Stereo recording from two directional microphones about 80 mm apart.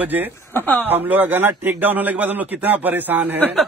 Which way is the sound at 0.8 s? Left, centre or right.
Right.